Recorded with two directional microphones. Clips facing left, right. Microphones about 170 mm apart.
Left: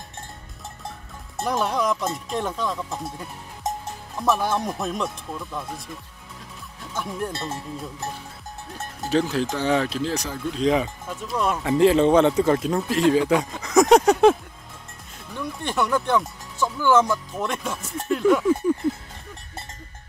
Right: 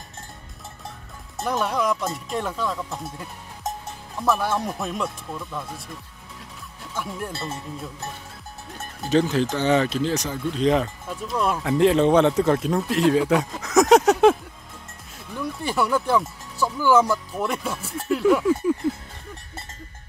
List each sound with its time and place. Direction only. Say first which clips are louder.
1.4 s speech: even; centre (ahead or behind)
7.0 s speech: left 2 dB; centre (ahead or behind)
9.1 s speech: right 2 dB; centre (ahead or behind)
15.3 s speech: right 1 dB; 5° right (ahead or behind)